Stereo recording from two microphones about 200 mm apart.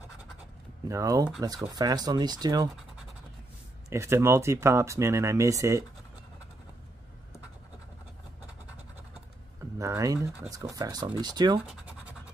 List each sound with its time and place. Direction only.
0.8 s speech: 15° right (ahead or behind)
3.9 s speech: 15° right (ahead or behind)
9.6 s speech: 15° right (ahead or behind)